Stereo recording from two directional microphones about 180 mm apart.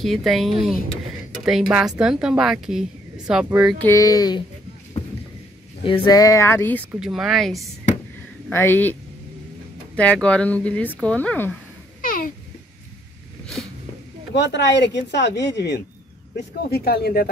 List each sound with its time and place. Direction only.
0.0 s speech: centre (ahead or behind)
3.7 s speech: 15° left (ahead or behind)
5.9 s speech: 25° left (ahead or behind)
6.9 s speech: 5° right (ahead or behind)
8.5 s speech: 10° left (ahead or behind)
9.9 s speech: 5° left (ahead or behind)
12.0 s babbling: 50° left (ahead or behind)
14.3 s speech: 75° left (ahead or behind)